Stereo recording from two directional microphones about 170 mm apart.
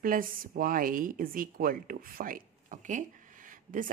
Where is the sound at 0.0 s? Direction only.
55° right (ahead or behind).